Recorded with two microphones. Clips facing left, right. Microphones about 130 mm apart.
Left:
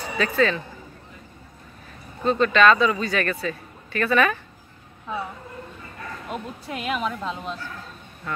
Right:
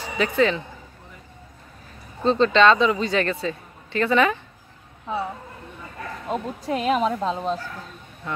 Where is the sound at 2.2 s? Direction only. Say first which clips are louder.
Right 2 dB; 25° right (ahead or behind).